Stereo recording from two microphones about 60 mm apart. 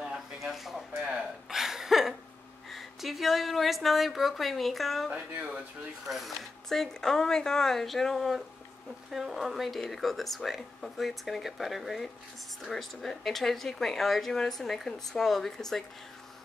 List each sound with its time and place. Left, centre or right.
0.4 s speech: centre
1.5 s a sound: centre
2.7 s speech: centre
5.1 s speech: right
6.0 s speech: centre